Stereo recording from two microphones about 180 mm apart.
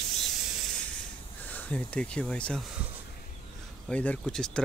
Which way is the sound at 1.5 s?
5° left (ahead or behind).